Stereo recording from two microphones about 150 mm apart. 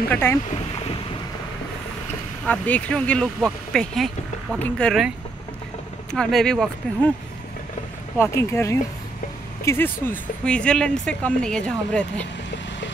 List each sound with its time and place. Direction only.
0.1 s speech: 15° left (ahead or behind)
2.4 s speech: 10° left (ahead or behind)
6.1 s speech: 5° left (ahead or behind)
8.2 s speech: 20° left (ahead or behind)
10.0 s speech: 5° left (ahead or behind)